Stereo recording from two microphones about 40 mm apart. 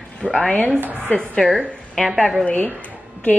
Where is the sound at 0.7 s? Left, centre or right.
Right.